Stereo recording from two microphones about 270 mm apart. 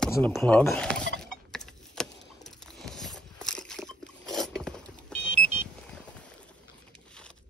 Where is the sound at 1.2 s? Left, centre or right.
Centre.